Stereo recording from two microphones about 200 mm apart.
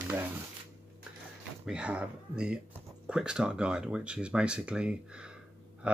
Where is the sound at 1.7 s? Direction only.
5° right (ahead or behind).